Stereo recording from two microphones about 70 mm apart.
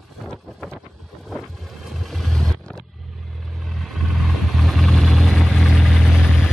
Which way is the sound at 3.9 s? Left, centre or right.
Centre.